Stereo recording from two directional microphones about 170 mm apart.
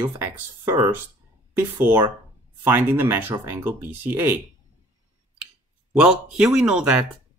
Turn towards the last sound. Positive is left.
turn(degrees=-5)  # may be behind; listen again after turning